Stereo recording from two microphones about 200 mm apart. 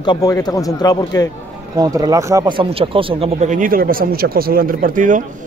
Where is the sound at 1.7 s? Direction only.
20° right (ahead or behind).